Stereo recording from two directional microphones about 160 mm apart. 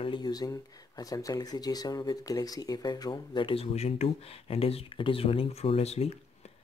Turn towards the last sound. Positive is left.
turn(degrees=40)  # may be behind; listen again after turning